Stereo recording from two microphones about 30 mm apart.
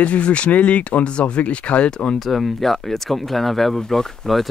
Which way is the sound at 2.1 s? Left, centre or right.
Centre.